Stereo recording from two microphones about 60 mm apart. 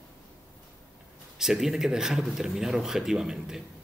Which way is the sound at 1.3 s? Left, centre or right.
Centre.